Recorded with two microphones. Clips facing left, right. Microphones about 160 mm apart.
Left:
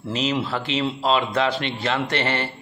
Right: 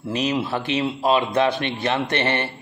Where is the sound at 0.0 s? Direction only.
15° right (ahead or behind).